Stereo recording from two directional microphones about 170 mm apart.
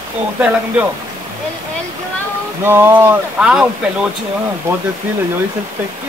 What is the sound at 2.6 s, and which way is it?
Speech, 15° right (ahead or behind).